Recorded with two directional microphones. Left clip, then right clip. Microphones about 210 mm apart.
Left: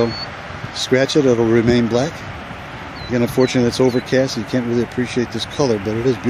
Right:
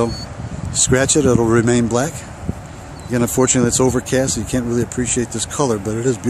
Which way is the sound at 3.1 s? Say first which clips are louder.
Even; 5° right (ahead or behind).